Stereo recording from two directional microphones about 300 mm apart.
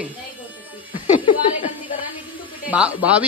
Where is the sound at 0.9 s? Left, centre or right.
Centre.